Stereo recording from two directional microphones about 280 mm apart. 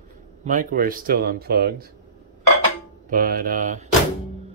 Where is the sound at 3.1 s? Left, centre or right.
Right.